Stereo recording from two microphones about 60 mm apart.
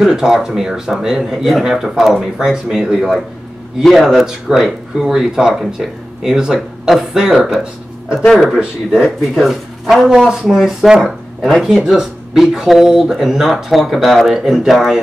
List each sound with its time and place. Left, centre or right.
0.0 s speech: centre
9.0 s speech: centre